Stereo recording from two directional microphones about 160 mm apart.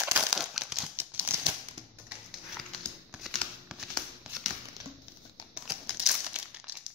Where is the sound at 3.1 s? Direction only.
Centre (ahead or behind).